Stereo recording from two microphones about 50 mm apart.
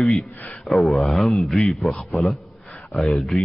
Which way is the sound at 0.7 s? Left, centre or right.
Centre.